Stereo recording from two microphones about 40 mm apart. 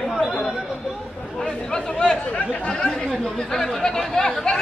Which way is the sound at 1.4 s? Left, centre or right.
Left.